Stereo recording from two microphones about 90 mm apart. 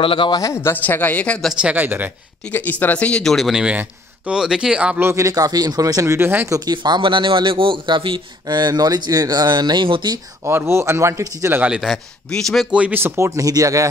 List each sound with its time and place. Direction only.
0.0 s speech: 75° left (ahead or behind)
0.3 s speech: 40° left (ahead or behind)
0.6 s speech: 20° left (ahead or behind)
1.6 s speech: 15° right (ahead or behind)
2.5 s speech: 20° left (ahead or behind)
3.3 s speech: centre (ahead or behind)
5.0 s speech: 35° right (ahead or behind)
6.1 s speech: 25° right (ahead or behind)
6.5 s a man's voice: 50° right (ahead or behind); by 8.5 s 65° right (ahead or behind)
8.5 s speech: 50° right (ahead or behind)
10.4 s speech: 30° right (ahead or behind)
11.6 s speech: 5° right (ahead or behind)
12.7 s speech: 15° right (ahead or behind)
13.0 s speech: 30° right (ahead or behind)